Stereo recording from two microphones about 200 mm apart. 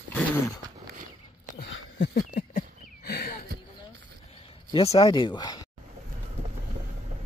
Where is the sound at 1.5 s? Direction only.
60° left (ahead or behind).